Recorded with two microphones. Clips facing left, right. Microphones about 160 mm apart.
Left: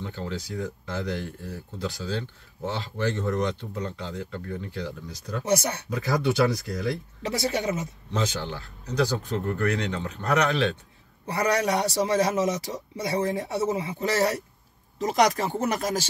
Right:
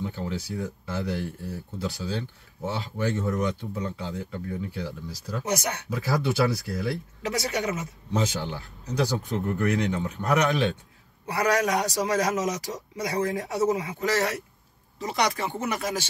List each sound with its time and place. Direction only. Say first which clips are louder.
0.0 s speech: right 2 dB; 10° right (ahead or behind)
5.5 s speech: left 4 dB; 30° left (ahead or behind)
5.9 s speech: left 2 dB; 5° right (ahead or behind)
7.2 s speech: left 1 dB; 30° left (ahead or behind)
8.1 s speech: right 2 dB; 10° right (ahead or behind)
11.6 s speech: left 1 dB; 30° left (ahead or behind)
15.0 s speech: left 4 dB; 45° left (ahead or behind)